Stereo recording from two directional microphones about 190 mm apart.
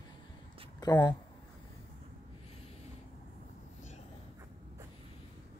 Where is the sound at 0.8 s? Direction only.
20° left (ahead or behind).